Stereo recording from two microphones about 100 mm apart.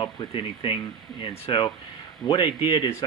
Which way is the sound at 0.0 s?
55° left (ahead or behind).